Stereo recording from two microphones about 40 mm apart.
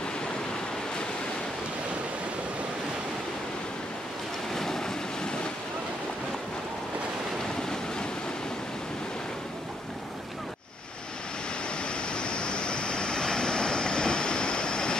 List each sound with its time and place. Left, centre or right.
4.6 s waves: centre
11.8 s vehicle: left